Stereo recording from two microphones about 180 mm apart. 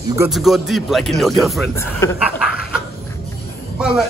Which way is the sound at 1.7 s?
15° left (ahead or behind).